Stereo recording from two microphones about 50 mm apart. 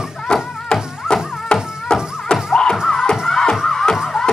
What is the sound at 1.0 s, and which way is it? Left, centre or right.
Music, centre.